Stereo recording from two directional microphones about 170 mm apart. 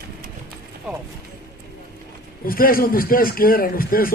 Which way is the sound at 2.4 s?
55° left (ahead or behind).